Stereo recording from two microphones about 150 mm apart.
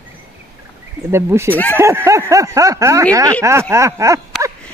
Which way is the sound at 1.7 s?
15° right (ahead or behind).